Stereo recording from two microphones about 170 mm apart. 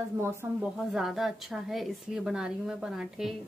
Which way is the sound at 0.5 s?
Centre (ahead or behind).